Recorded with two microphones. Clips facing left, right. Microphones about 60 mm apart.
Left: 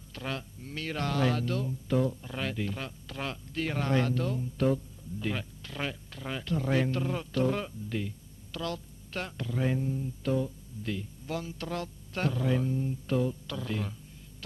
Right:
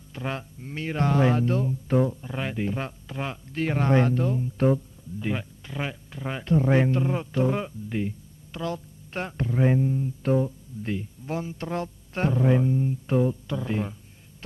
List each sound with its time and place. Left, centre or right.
0.1 s speech: right